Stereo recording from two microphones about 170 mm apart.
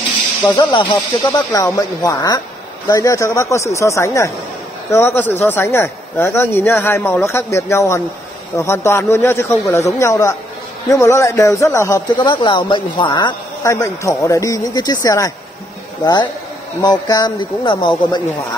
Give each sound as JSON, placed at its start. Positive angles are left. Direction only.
{"t": 0.4, "sound": "speech", "side_deg": 25}